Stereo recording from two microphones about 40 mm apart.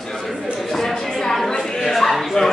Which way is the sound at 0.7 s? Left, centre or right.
Centre.